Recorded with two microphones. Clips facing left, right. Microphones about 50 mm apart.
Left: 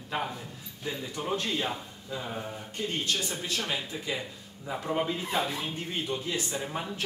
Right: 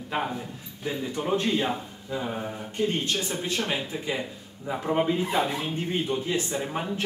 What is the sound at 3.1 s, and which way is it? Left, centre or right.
Speech, right.